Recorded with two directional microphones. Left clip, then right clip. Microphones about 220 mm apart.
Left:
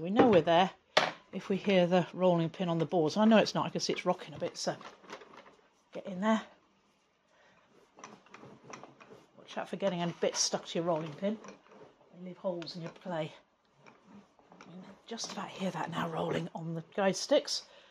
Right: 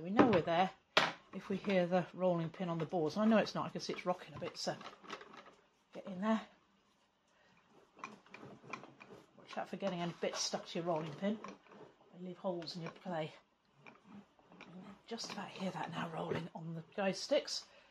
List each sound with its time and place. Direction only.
0.0 s chopping: 45° left (ahead or behind)
1.3 s speech: 45° left (ahead or behind)
5.9 s speech: 35° left (ahead or behind)
9.5 s speech: 40° left (ahead or behind)
11.2 s speech: 25° left (ahead or behind)
12.4 s speech: 25° left (ahead or behind)
13.0 s speech: 40° left (ahead or behind)
15.0 s speech: 35° left (ahead or behind)